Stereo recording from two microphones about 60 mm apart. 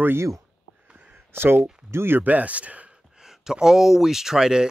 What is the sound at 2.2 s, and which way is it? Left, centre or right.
Speech, right.